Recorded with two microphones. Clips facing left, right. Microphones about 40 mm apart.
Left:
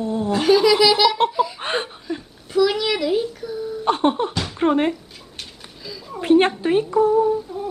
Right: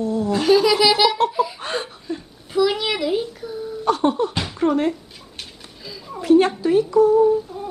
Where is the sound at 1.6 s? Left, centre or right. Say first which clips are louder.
Left 2 dB; left.